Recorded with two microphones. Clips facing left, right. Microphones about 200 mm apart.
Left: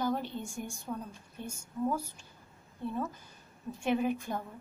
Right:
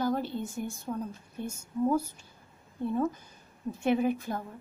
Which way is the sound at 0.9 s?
15° right (ahead or behind).